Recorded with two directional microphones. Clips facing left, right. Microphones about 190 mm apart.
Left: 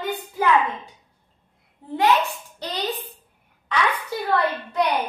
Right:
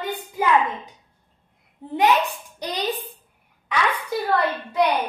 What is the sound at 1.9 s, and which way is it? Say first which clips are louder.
A woman's voice: right 1 dB; 15° right (ahead or behind).